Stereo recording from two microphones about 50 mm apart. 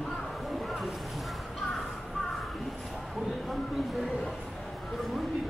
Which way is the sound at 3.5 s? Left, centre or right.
Centre.